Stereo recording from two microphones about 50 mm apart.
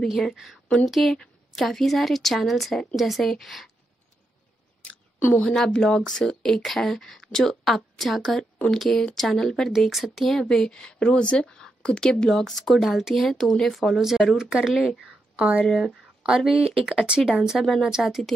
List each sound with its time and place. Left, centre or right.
0.1 s a woman's voice: centre
5.4 s a woman's voice: centre
10.4 s a woman's voice: centre
15.3 s speech: right
15.6 s a woman's voice: centre
17.3 s a woman's voice: centre